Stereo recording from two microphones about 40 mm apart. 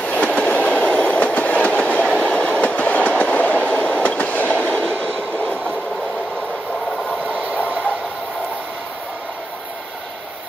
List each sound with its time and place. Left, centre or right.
0.0 s train: left
2.0 s train: left
7.3 s train: right